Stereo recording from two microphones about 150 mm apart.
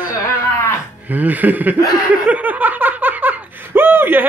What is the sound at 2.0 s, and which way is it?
Laughter, 10° right (ahead or behind).